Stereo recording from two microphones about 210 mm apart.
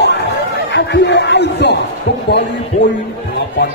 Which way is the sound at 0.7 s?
55° left (ahead or behind).